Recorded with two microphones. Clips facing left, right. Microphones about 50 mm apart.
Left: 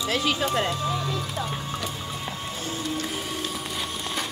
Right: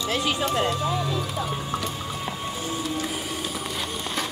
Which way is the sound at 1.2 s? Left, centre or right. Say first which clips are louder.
Right 2 dB; centre.